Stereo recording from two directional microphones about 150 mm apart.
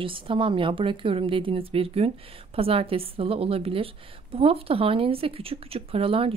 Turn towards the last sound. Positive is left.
turn(degrees=-40)  # may be behind; listen again after turning